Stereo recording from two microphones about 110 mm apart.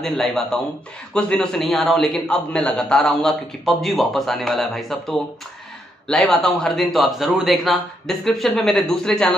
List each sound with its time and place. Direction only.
0.0 s a man's voice: 5° left (ahead or behind)